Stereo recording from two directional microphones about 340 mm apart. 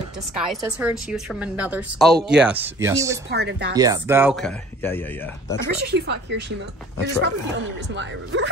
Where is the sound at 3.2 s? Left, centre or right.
Right.